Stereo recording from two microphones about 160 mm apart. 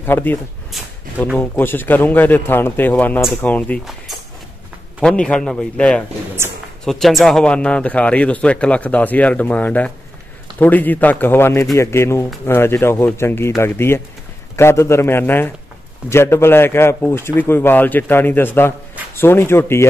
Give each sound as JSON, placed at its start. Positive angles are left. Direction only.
{"t": 0.0, "sound": "a man's voice", "side_deg": 10}
{"t": 0.7, "sound": "a sound", "side_deg": 0}
{"t": 1.4, "sound": "a man's voice", "side_deg": 10}
{"t": 5.0, "sound": "a man's voice", "side_deg": 5}